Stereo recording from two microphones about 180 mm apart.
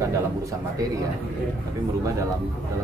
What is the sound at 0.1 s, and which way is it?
Speech, 15° right (ahead or behind).